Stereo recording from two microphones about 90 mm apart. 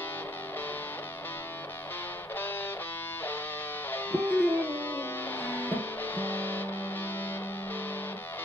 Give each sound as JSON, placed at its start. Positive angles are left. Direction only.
{"t": 3.9, "sound": "music", "side_deg": 25}